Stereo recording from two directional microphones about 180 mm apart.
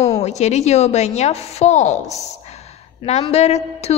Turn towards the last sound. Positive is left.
turn(degrees=35)  # may be behind; listen again after turning